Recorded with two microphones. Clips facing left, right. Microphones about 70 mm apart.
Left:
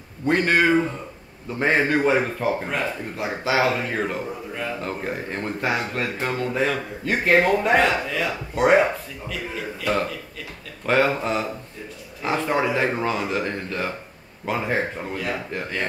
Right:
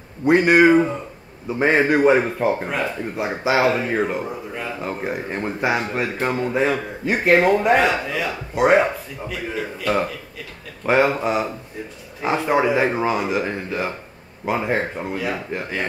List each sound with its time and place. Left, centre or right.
0.2 s speech: centre
10.9 s speech: centre